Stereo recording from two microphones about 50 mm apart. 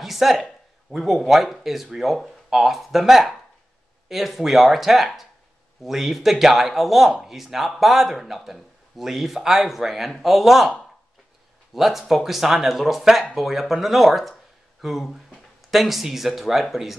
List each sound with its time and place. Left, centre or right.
0.0 s speech: centre
11.7 s speech: centre